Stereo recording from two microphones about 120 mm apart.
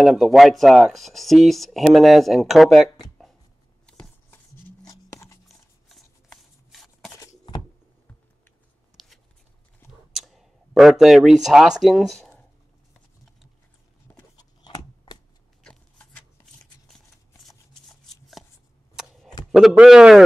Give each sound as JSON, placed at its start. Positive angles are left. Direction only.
{"t": 0.0, "sound": "speech", "side_deg": 0}
{"t": 3.8, "sound": "shuffling cards", "side_deg": 10}
{"t": 4.8, "sound": "a sound", "side_deg": 25}
{"t": 5.9, "sound": "shuffling cards", "side_deg": 5}
{"t": 10.1, "sound": "clicking", "side_deg": 0}
{"t": 11.4, "sound": "speech", "side_deg": -5}
{"t": 14.3, "sound": "a sound", "side_deg": 35}
{"t": 15.6, "sound": "a sound", "side_deg": 10}
{"t": 17.5, "sound": "shuffling cards", "side_deg": 0}
{"t": 19.5, "sound": "speech", "side_deg": -5}